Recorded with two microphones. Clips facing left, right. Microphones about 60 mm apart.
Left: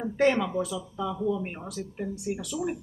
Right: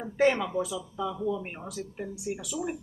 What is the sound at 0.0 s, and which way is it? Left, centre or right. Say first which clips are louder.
A woman's voice: left 1 dB; centre.